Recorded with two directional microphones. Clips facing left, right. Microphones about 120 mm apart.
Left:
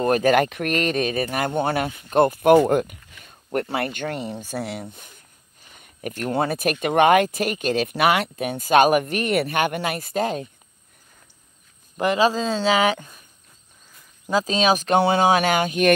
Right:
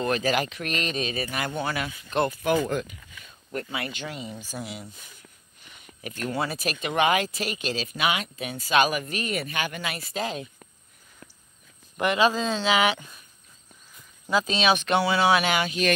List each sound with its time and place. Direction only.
0.0 s speech: 50° left (ahead or behind)
5.8 s speech: 45° left (ahead or behind)
12.0 s speech: 35° left (ahead or behind)
14.3 s speech: 40° left (ahead or behind)